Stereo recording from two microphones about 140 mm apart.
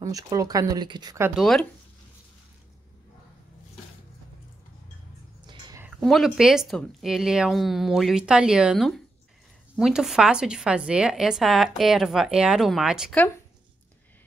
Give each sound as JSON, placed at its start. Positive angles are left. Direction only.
{"t": 0.0, "sound": "speech", "side_deg": -25}
{"t": 1.3, "sound": "a woman's voice", "side_deg": 0}
{"t": 6.0, "sound": "a woman's voice", "side_deg": 0}